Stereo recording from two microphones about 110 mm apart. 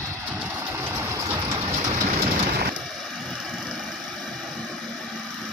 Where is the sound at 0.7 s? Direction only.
25° right (ahead or behind).